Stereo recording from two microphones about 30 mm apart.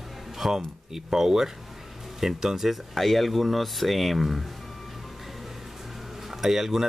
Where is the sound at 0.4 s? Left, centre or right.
Centre.